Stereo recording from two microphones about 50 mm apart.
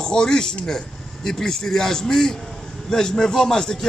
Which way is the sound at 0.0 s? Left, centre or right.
Centre.